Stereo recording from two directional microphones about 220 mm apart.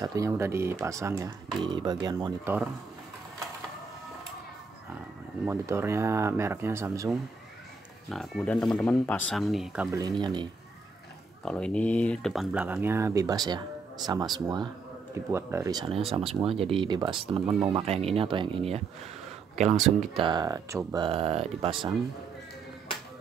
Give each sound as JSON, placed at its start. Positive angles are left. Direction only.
{"t": 0.0, "sound": "speech", "side_deg": -15}
{"t": 5.4, "sound": "speech", "side_deg": -10}
{"t": 8.1, "sound": "speech", "side_deg": 0}
{"t": 9.9, "sound": "speech", "side_deg": -20}
{"t": 11.4, "sound": "speech", "side_deg": 5}
{"t": 19.7, "sound": "speech", "side_deg": 0}
{"t": 20.2, "sound": "speech", "side_deg": -20}